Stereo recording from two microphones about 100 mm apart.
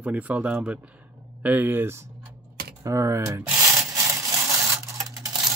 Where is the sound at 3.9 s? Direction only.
35° right (ahead or behind).